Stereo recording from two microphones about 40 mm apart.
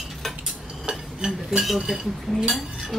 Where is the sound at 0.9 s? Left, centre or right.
Right.